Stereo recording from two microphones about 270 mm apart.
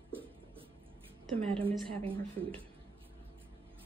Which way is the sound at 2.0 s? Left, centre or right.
Centre.